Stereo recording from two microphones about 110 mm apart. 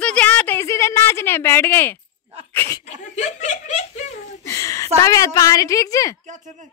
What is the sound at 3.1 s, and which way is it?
Speech, 90° left.